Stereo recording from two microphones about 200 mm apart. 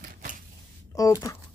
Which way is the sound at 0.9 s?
15° left (ahead or behind).